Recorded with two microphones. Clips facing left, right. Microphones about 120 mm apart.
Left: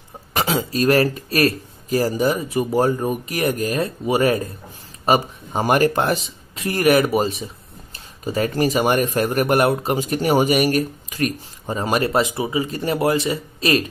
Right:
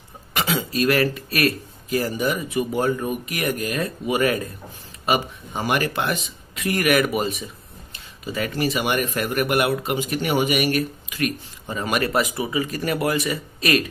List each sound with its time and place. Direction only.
0.3 s speech: 35° left (ahead or behind)